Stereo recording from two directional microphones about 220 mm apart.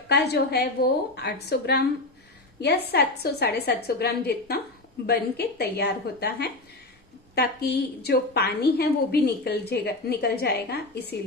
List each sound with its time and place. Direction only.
0.1 s a woman's voice: 45° left (ahead or behind)
2.9 s a woman's voice: 45° left (ahead or behind)